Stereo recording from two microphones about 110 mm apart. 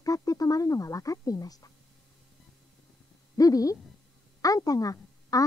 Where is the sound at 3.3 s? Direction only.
35° left (ahead or behind).